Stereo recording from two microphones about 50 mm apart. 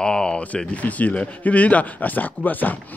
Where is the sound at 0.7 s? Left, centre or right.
Left.